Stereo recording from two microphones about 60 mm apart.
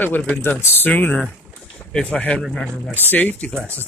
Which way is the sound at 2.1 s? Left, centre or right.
Left.